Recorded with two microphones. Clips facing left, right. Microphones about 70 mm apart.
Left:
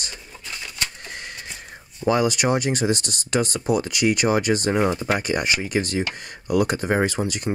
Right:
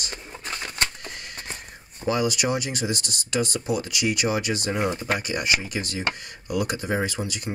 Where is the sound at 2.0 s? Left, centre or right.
Left.